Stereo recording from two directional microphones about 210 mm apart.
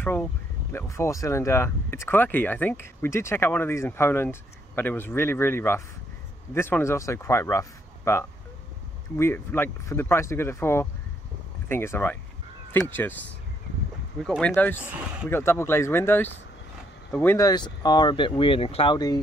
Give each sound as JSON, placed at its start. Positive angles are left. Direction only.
{"t": 0.0, "sound": "speech", "side_deg": 10}
{"t": 14.2, "sound": "speech", "side_deg": 0}
{"t": 14.8, "sound": "speech", "side_deg": -5}
{"t": 15.2, "sound": "speech", "side_deg": 10}